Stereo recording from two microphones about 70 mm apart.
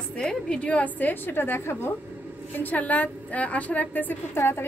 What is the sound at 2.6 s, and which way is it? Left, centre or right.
A woman's voice, left.